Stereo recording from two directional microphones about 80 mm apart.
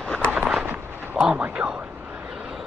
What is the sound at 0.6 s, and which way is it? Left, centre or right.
Artillery fire, centre.